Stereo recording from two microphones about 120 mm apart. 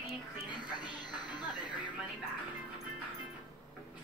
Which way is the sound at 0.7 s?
35° left (ahead or behind).